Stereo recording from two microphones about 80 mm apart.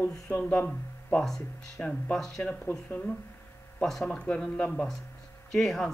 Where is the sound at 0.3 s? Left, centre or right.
Centre.